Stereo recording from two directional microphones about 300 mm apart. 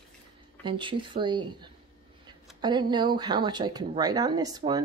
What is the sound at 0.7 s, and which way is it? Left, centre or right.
Speech, centre.